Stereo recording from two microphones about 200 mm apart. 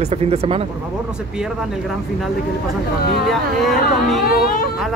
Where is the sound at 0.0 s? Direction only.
30° right (ahead or behind).